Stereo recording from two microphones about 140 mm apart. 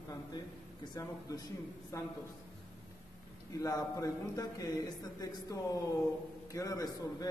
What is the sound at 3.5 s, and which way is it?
A man's voice, 25° left (ahead or behind).